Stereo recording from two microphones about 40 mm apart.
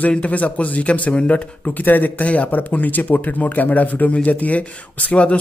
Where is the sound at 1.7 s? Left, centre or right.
Left.